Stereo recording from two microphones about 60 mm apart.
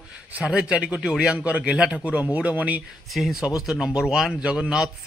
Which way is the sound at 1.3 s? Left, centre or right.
Right.